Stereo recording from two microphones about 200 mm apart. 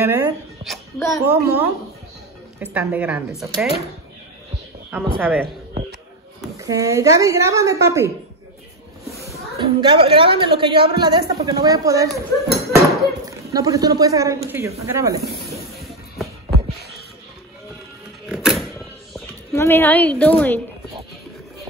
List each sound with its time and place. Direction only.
0.0 s a woman's voice: 10° right (ahead or behind)
0.6 s a sound: 25° right (ahead or behind)
1.2 s a woman's voice: 10° right (ahead or behind)
4.9 s a woman's voice: 10° right (ahead or behind)
6.6 s a woman's voice: 15° right (ahead or behind)
9.8 s a woman's voice: 25° right (ahead or behind)
12.1 s a sound: centre (ahead or behind)
13.2 s a woman's voice: 15° right (ahead or behind)
18.3 s a sound: 5° right (ahead or behind)
19.5 s a woman's voice: 15° left (ahead or behind)